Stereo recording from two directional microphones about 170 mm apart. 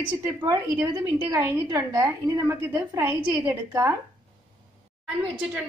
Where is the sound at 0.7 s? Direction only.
10° right (ahead or behind).